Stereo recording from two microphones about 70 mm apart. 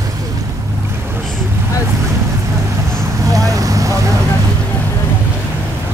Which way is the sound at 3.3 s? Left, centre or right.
Right.